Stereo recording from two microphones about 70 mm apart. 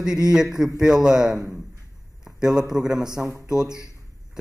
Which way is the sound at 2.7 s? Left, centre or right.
Centre.